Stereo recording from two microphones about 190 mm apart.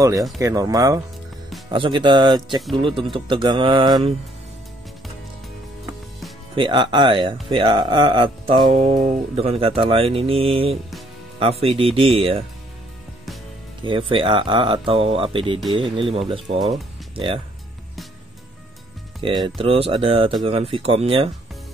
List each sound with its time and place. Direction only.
0.4 s speech: 20° right (ahead or behind)
6.5 s speech: 25° right (ahead or behind)
13.8 s speech: 25° right (ahead or behind)
19.2 s speech: 25° right (ahead or behind)